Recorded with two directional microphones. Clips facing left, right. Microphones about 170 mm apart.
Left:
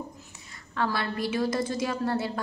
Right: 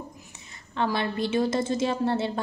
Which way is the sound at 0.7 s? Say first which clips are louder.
Right 2 dB; 20° right (ahead or behind).